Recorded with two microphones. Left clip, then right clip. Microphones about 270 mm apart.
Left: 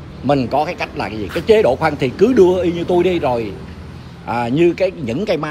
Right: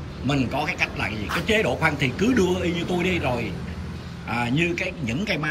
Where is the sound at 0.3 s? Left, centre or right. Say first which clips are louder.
Left 9 dB; centre.